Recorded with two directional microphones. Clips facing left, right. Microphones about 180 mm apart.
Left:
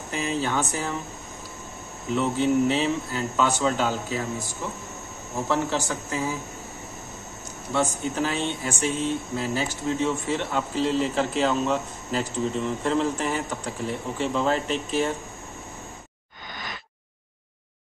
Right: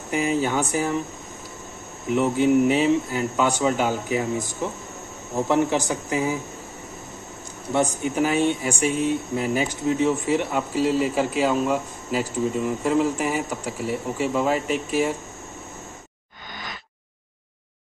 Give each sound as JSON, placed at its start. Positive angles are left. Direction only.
{"t": 0.1, "sound": "speech", "side_deg": -15}
{"t": 2.0, "sound": "speech", "side_deg": -15}
{"t": 5.5, "sound": "speech", "side_deg": -15}
{"t": 7.7, "sound": "speech", "side_deg": -15}